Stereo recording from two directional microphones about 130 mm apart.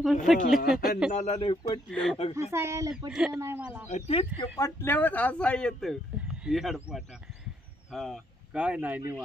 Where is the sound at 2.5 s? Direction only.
20° right (ahead or behind).